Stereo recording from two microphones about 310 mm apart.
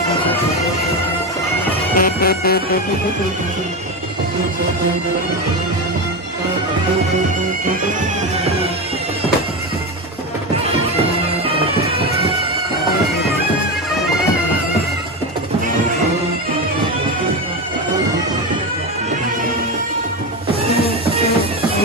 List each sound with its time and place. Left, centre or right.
2.0 s music: left